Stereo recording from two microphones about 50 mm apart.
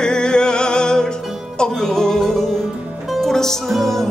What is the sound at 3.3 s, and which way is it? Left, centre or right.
Music, centre.